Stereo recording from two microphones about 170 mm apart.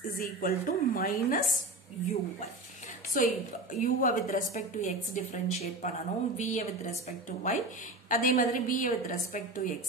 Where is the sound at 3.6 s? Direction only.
55° left (ahead or behind).